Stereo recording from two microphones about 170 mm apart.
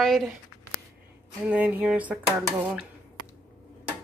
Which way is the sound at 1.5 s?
10° right (ahead or behind).